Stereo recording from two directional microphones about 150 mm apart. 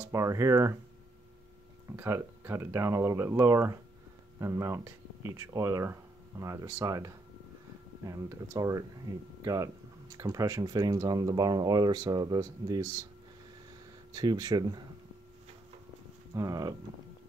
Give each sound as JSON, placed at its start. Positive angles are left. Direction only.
{"t": 0.0, "sound": "speech", "side_deg": -20}
{"t": 2.0, "sound": "speech", "side_deg": -15}
{"t": 14.1, "sound": "speech", "side_deg": -25}
{"t": 16.3, "sound": "speech", "side_deg": -20}